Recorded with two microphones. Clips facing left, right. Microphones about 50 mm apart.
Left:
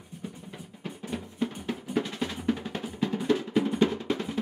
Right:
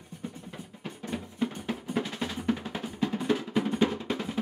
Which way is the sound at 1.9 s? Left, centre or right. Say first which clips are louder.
Left 2 dB; centre.